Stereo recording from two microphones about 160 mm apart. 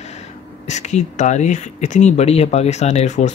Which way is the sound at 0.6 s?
45° left (ahead or behind).